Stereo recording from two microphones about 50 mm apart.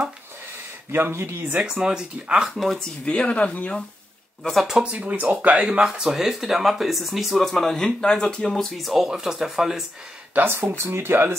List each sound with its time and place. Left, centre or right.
0.9 s speech: right
1.6 s speech: centre
2.4 s speech: centre
2.8 s speech: left
4.4 s speech: centre
4.8 s speech: right
5.9 s speech: centre
8.7 s speech: centre
10.3 s speech: right